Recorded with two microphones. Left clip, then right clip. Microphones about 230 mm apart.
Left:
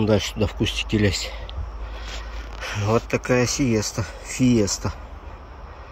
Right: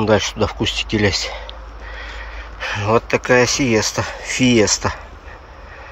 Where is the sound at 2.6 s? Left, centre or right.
Centre.